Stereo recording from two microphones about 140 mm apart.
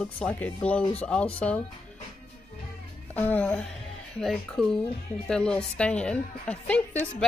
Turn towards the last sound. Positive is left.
turn(degrees=10)  # may be behind; listen again after turning